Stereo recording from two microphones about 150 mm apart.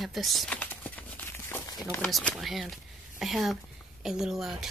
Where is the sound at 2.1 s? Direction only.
Centre (ahead or behind).